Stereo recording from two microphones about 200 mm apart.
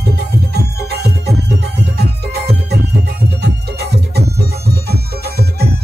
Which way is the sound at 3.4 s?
55° right (ahead or behind).